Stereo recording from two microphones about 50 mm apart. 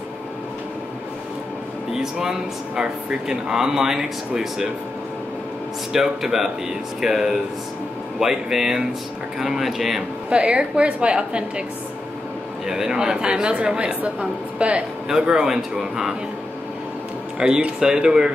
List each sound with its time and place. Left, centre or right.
1.9 s speech: centre
5.9 s speech: centre
10.3 s a woman's voice: right
12.6 s a woman's voice: centre
15.0 s speech: centre
17.4 s speech: centre